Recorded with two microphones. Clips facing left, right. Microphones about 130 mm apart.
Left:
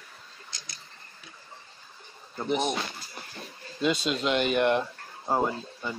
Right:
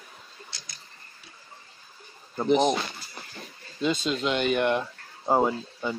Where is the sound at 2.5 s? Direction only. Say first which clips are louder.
Right 6 dB; 40° right (ahead or behind).